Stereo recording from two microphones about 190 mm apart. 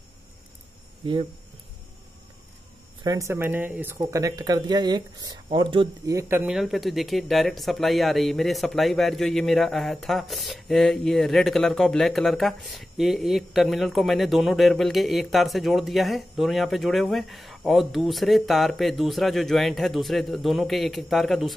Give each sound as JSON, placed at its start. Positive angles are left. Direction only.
{"t": 3.0, "sound": "speech", "side_deg": -15}
{"t": 6.1, "sound": "speech", "side_deg": -15}
{"t": 6.5, "sound": "speech", "side_deg": 0}